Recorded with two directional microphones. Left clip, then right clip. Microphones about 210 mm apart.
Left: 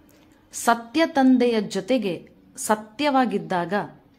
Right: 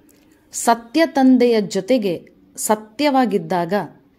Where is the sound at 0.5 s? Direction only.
15° right (ahead or behind).